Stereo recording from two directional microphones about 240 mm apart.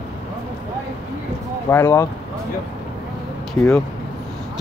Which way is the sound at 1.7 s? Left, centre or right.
Centre.